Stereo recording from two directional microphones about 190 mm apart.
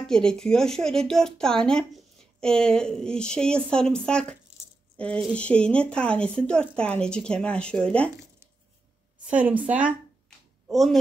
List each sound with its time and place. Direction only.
0.0 s speech: 5° left (ahead or behind)
9.3 s a woman's voice: 5° right (ahead or behind)